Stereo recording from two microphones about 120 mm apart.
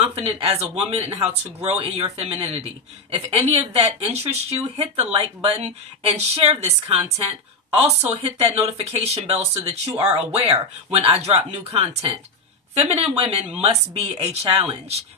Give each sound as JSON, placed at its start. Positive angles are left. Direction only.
{"t": 0.0, "sound": "speech", "side_deg": -55}